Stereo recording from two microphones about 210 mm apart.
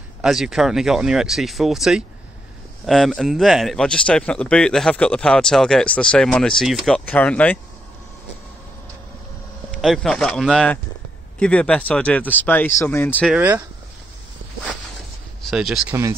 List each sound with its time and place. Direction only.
0.2 s speech: centre (ahead or behind)
9.8 s speech: centre (ahead or behind)
13.3 s speech: 5° right (ahead or behind)
15.4 s speech: centre (ahead or behind)